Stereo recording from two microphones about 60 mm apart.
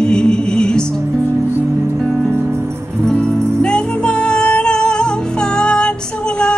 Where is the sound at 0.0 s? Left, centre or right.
Centre.